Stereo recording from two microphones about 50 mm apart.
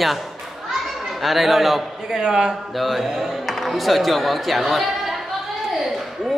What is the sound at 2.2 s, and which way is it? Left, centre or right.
Speech, centre.